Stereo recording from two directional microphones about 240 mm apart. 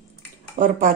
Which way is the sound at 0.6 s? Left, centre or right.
Right.